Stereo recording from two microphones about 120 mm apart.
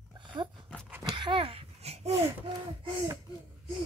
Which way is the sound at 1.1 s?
40° right (ahead or behind).